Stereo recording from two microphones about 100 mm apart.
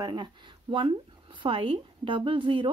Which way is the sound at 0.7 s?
60° right (ahead or behind).